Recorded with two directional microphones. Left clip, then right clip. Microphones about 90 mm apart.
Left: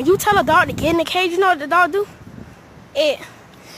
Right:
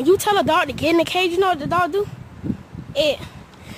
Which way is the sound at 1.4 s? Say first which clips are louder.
Left 7 dB; 15° right (ahead or behind).